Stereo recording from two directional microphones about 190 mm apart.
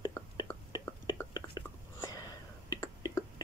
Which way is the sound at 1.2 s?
10° left (ahead or behind).